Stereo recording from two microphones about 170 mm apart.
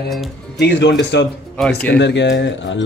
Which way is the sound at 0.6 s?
85° left.